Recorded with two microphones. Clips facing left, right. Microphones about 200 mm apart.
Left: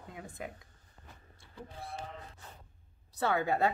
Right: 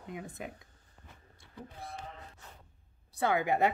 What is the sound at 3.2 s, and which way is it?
Speech, 15° right (ahead or behind).